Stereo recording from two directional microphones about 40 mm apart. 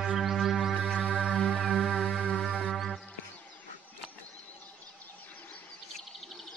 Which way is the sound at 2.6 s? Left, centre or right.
Centre.